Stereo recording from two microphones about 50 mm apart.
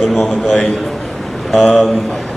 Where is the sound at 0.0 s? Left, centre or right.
Centre.